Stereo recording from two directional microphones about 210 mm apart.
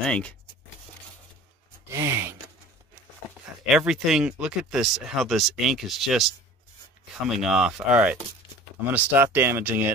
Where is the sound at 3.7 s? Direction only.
Centre (ahead or behind).